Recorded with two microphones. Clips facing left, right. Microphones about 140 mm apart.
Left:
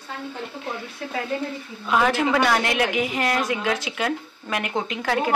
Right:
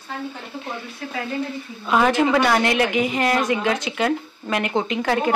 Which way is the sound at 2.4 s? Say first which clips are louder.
Right 3 dB; 5° left (ahead or behind).